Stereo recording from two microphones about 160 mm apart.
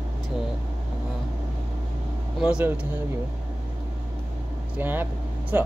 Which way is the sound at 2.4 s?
10° right (ahead or behind).